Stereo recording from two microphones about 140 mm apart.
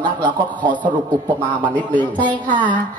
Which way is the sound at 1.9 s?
10° left (ahead or behind).